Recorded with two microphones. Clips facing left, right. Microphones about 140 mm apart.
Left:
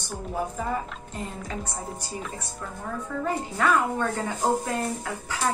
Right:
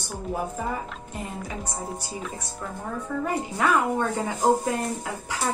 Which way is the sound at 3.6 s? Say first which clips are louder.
Right 1 dB; 15° right (ahead or behind).